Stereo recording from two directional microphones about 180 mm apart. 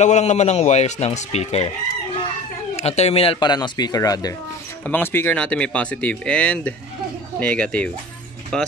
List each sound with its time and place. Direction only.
0.0 s speech: 40° left (ahead or behind)
2.7 s speech: 35° left (ahead or behind); by 8.7 s 5° left (ahead or behind)